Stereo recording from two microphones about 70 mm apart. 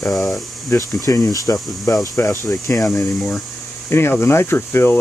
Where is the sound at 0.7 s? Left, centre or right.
Left.